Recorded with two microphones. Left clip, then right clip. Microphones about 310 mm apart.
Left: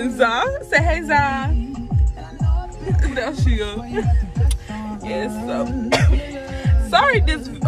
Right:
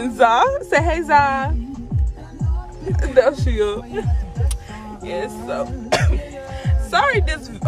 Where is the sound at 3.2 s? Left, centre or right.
Right.